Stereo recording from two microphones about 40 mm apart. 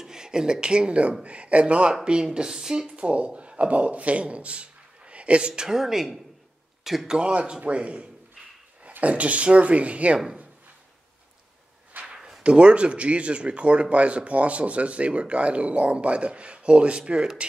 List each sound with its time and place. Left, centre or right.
0.0 s speech: centre
3.0 s a man's voice: right
5.6 s speech: centre
6.8 s a sound: centre
7.1 s speech: right
11.9 s a sound: right
12.4 s speech: right